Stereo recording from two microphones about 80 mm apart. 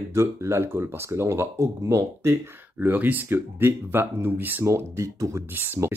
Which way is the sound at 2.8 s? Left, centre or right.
Right.